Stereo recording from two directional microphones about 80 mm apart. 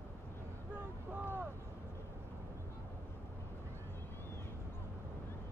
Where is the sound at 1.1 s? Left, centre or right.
Right.